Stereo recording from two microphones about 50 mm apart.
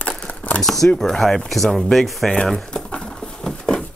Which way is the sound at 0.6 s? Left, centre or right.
Centre.